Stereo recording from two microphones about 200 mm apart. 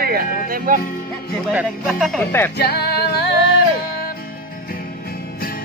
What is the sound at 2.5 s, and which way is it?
Music, 55° left (ahead or behind).